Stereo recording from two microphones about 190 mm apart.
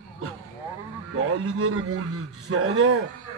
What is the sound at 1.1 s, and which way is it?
Speech, 90° right.